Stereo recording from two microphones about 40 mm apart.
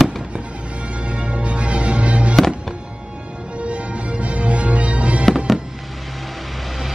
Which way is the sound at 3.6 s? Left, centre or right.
Right.